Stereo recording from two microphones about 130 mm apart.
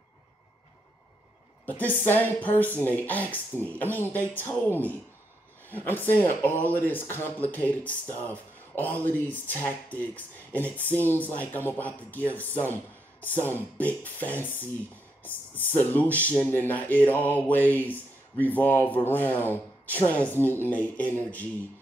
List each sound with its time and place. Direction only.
1.7 s speech: 15° left (ahead or behind)